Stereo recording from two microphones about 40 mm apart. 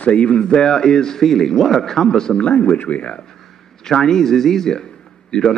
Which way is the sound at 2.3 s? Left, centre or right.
Left.